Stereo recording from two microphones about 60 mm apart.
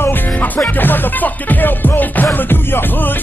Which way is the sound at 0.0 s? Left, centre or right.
Left.